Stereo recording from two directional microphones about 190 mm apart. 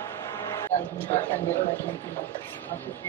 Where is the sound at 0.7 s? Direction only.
35° left (ahead or behind).